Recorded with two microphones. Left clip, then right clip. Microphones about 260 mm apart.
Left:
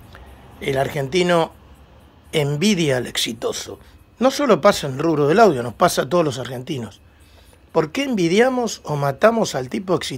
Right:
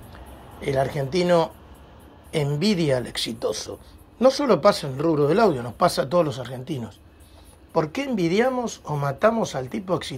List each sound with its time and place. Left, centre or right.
0.7 s speech: centre